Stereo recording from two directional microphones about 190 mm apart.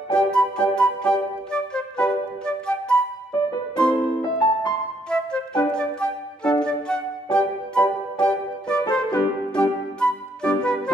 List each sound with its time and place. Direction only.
0.1 s music: 5° left (ahead or behind)
3.8 s music: 25° left (ahead or behind)
5.1 s music: 5° left (ahead or behind)